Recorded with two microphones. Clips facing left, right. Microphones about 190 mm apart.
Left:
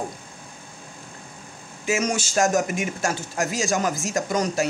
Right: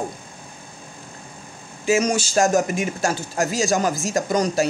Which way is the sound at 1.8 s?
35° right (ahead or behind).